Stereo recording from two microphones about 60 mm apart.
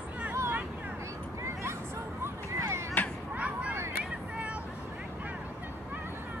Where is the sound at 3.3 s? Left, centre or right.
Right.